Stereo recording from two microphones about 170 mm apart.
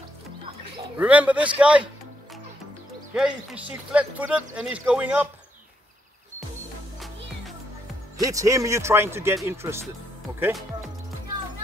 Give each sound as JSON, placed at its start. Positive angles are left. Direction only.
{"t": 0.9, "sound": "speech", "side_deg": -10}
{"t": 3.2, "sound": "speech", "side_deg": -5}
{"t": 8.2, "sound": "speech", "side_deg": -20}